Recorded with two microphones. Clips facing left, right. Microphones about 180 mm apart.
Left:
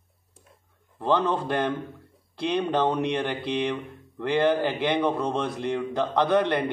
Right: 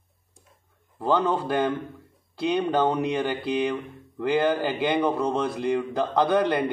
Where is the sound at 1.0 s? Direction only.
5° right (ahead or behind).